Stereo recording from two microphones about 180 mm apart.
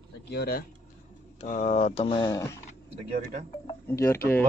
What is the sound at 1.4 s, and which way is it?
Speech, 40° left (ahead or behind).